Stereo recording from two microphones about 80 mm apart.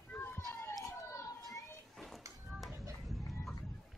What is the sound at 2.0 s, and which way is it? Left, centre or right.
Music, centre.